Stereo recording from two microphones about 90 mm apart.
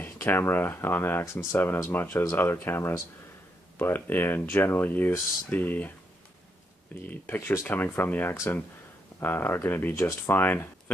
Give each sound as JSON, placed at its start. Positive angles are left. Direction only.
{"t": 0.0, "sound": "speech", "side_deg": 25}
{"t": 7.1, "sound": "speech", "side_deg": 20}